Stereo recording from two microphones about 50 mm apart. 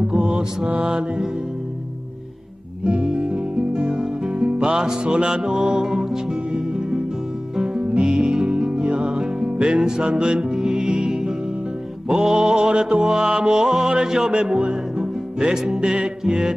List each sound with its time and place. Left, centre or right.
0.0 s mantra: centre
0.7 s mantra: right
0.9 s music: centre
2.8 s guitar: centre
6.5 s music: centre